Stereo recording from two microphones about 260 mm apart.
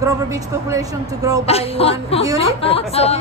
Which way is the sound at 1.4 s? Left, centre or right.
Left.